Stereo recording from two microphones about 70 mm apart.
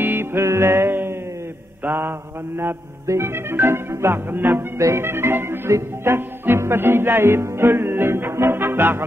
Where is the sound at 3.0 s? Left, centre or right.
Right.